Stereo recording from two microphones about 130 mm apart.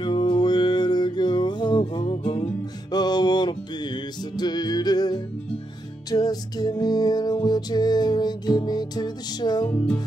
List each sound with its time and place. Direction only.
0.0 s music: 40° left (ahead or behind)
9.7 s music: 10° left (ahead or behind)